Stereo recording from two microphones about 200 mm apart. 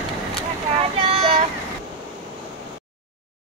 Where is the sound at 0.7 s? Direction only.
30° right (ahead or behind).